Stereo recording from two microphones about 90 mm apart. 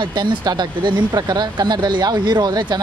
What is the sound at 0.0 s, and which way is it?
Speech, 55° right (ahead or behind).